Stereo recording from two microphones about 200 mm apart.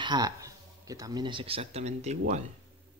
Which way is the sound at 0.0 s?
20° right (ahead or behind).